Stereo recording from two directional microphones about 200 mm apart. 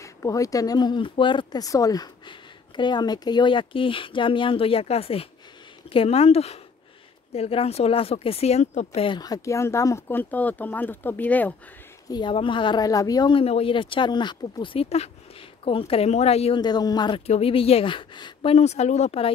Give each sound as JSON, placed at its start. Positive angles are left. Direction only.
{"t": 0.0, "sound": "speech", "side_deg": 15}
{"t": 12.1, "sound": "speech", "side_deg": 25}